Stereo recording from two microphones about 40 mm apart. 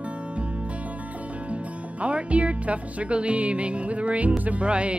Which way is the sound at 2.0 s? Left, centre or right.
Right.